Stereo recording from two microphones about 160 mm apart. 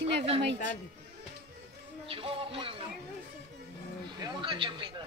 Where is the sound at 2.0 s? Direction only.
35° right (ahead or behind).